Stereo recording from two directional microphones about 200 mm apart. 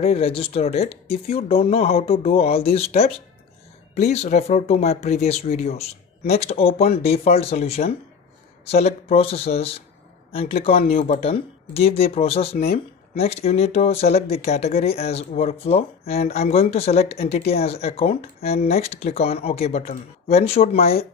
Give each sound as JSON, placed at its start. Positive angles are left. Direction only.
{"t": 0.0, "sound": "speech", "side_deg": 30}